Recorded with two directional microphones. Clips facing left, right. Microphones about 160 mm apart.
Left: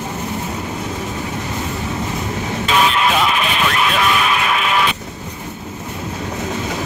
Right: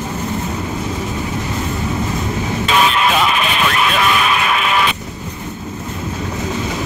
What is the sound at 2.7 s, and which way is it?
Vehicle, 90° right.